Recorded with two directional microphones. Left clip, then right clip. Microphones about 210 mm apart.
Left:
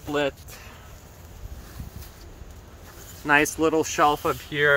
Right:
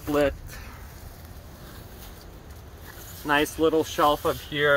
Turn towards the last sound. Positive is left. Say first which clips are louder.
# left 2 dB
turn(degrees=45)  # may be behind; listen again after turning